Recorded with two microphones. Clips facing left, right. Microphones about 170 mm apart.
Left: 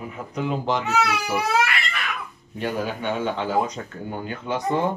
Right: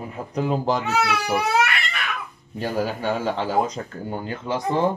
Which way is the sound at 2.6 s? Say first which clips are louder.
Right 2 dB; 35° right (ahead or behind).